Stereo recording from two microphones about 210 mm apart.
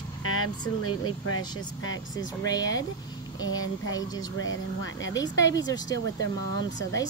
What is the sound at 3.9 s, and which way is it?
Speech, 20° left (ahead or behind).